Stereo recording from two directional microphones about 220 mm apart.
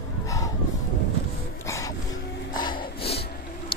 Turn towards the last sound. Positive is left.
turn(degrees=25)  # may be behind; listen again after turning